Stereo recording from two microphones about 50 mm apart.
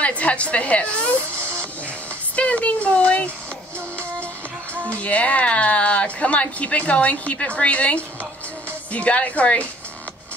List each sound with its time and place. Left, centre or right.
0.0 s a woman's voice: left
2.3 s speech: left
4.8 s a woman's voice: left